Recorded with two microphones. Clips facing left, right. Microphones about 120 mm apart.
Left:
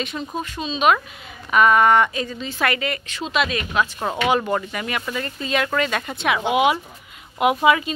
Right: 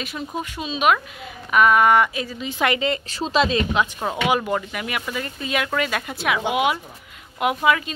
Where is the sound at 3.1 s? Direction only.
35° right (ahead or behind).